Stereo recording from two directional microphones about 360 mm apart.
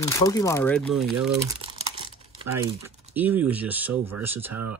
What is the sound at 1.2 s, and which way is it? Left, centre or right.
Crumpling, centre.